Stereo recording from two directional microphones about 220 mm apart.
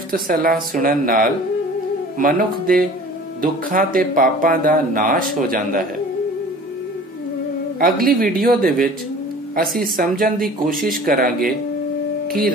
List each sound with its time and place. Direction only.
0.1 s speech: 40° right (ahead or behind)
7.8 s speech: 40° right (ahead or behind)